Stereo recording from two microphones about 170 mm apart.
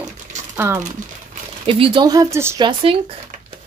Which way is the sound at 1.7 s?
30° right (ahead or behind).